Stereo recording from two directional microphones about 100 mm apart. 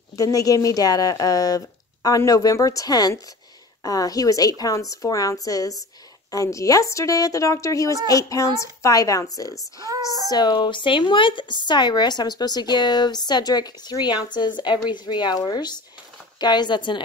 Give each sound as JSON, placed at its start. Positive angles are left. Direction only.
{"t": 0.1, "sound": "a woman's voice", "side_deg": 35}
{"t": 9.8, "sound": "speech", "side_deg": -40}
{"t": 10.3, "sound": "speech", "side_deg": 50}